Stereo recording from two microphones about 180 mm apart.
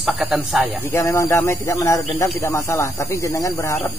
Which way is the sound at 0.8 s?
15° left (ahead or behind).